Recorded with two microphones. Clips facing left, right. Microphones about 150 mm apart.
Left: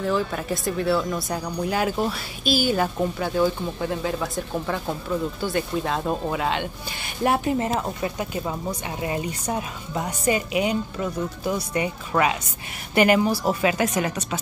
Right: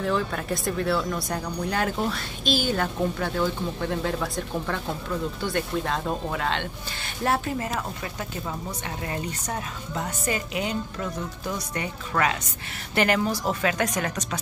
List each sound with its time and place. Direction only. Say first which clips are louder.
0.0 s speech: left 2 dB; 5° left (ahead or behind)
7.5 s speech: left 5 dB; 25° left (ahead or behind); by 14.4 s 10° left (ahead or behind)